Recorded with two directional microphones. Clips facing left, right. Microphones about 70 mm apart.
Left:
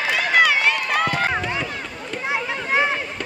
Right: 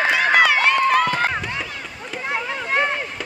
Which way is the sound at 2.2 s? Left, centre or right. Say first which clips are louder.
Even; centre.